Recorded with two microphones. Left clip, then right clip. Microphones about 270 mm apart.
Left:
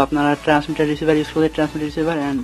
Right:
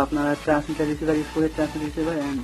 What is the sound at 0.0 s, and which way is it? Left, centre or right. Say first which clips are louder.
Speech: left 6 dB; left.